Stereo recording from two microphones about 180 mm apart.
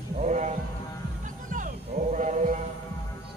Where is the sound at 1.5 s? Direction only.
45° right (ahead or behind).